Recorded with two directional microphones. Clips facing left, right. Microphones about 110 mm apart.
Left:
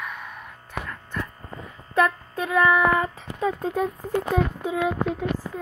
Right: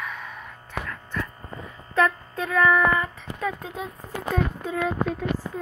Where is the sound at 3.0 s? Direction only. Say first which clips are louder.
Left 3 dB; 25° left (ahead or behind).